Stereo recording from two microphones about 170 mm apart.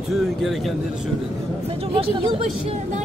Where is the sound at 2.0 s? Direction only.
35° right (ahead or behind).